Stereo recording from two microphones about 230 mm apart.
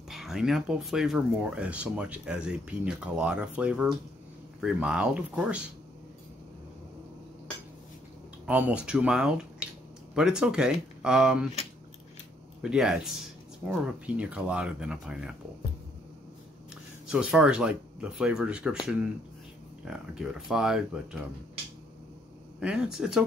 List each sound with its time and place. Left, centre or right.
0.1 s speech: centre
8.5 s speech: centre
12.6 s speech: centre
17.1 s speech: centre
22.6 s speech: centre